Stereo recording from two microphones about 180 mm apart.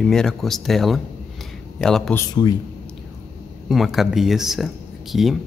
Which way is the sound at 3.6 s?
Centre (ahead or behind).